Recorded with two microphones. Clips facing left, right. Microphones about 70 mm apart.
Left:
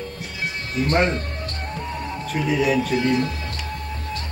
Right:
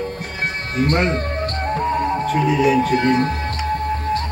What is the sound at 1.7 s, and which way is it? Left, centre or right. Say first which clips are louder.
Music: right 12 dB; right.